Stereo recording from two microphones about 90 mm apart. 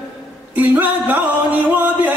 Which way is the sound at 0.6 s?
20° right (ahead or behind).